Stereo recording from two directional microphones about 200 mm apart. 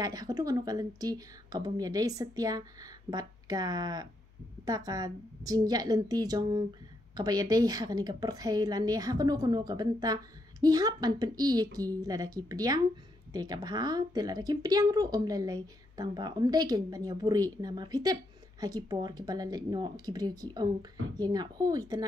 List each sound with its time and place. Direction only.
0.0 s a woman's voice: 20° right (ahead or behind)